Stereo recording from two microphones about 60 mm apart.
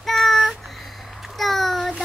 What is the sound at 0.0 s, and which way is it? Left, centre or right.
Child singing, centre.